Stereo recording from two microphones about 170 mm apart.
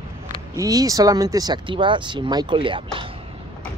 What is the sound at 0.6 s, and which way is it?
Speech, 20° right (ahead or behind).